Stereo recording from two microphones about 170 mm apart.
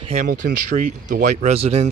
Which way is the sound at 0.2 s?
55° right (ahead or behind).